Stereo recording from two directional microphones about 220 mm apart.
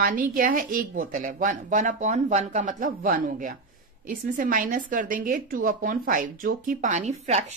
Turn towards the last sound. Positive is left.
turn(degrees=-30)  # may be behind; listen again after turning